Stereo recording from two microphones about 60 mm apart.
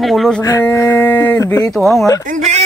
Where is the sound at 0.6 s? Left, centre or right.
Left.